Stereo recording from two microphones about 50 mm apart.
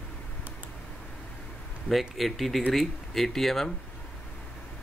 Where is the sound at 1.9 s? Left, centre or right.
Centre.